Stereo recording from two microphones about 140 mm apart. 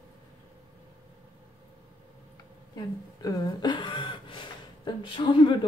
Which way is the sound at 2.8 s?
25° left (ahead or behind).